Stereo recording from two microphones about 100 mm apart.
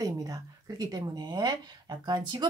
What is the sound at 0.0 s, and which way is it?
Speech, 35° right (ahead or behind).